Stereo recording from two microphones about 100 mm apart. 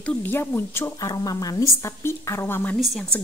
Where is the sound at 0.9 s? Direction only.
40° left (ahead or behind); by 2.7 s 20° left (ahead or behind).